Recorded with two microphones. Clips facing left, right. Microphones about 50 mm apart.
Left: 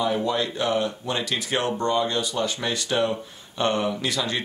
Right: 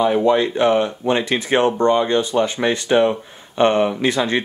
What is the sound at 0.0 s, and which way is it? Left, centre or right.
Speech, right.